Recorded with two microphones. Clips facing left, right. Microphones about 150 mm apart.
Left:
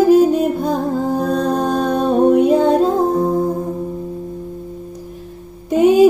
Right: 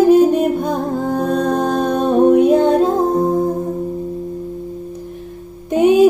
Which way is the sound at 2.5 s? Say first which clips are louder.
Right 1 dB; 5° left (ahead or behind).